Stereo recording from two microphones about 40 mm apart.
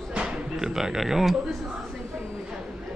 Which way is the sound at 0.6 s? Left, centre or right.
Centre.